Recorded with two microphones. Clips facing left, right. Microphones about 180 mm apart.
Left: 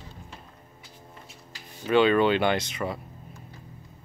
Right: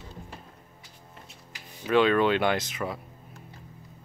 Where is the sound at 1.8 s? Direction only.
Centre (ahead or behind).